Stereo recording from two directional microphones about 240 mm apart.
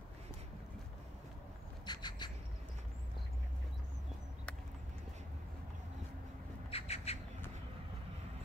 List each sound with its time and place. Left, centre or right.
1.9 s bird: centre
6.7 s bird: left